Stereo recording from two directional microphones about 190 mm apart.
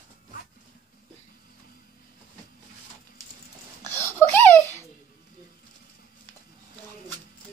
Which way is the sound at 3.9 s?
10° left (ahead or behind).